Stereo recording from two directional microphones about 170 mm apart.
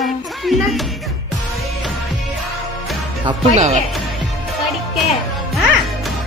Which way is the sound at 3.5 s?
40° right (ahead or behind).